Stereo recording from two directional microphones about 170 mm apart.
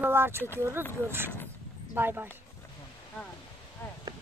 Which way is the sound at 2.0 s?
10° right (ahead or behind).